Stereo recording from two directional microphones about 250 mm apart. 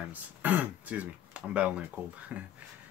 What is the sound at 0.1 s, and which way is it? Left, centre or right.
Speech, centre.